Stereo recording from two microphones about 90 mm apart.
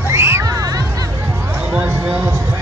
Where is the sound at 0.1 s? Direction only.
30° right (ahead or behind).